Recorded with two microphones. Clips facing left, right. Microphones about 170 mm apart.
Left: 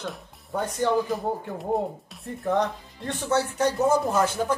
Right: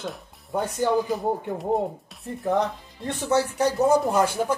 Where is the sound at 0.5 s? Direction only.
15° right (ahead or behind).